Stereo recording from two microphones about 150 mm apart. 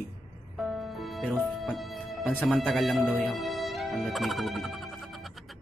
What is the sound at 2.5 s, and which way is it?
Speech, centre (ahead or behind).